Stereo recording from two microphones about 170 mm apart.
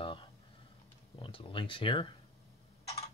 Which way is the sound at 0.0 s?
30° left (ahead or behind).